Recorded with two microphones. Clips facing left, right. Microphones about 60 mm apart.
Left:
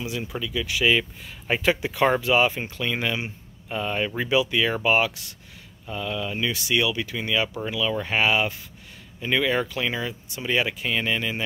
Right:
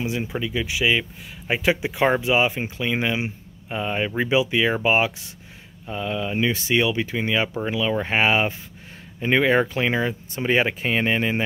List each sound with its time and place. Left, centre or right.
0.0 s speech: right
0.7 s speech: centre; by 11.4 s right